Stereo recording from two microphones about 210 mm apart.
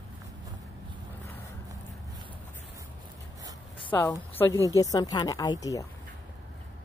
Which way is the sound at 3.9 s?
10° left (ahead or behind).